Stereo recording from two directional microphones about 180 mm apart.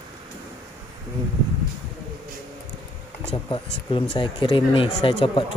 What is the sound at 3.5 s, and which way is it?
Speech, 30° left (ahead or behind).